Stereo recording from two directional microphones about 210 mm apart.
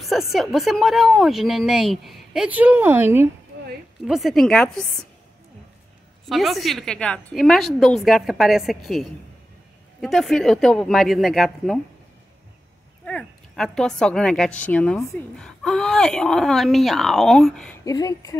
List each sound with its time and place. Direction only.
0.0 s a woman's voice: centre (ahead or behind)
4.1 s a woman's voice: centre (ahead or behind)
6.2 s a woman's voice: centre (ahead or behind)
13.0 s a woman's voice: 5° left (ahead or behind)
17.8 s speech: 15° left (ahead or behind)